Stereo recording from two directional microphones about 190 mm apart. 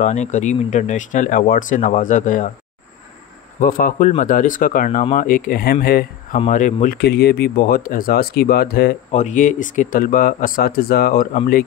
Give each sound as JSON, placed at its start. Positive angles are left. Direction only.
{"t": 0.0, "sound": "speech", "side_deg": 40}
{"t": 3.5, "sound": "speech", "side_deg": 50}
{"t": 6.4, "sound": "speech", "side_deg": 40}
{"t": 7.0, "sound": "speech", "side_deg": 60}
{"t": 9.2, "sound": "speech", "side_deg": 40}